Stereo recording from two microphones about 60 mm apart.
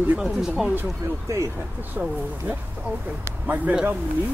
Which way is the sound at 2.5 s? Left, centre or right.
Right.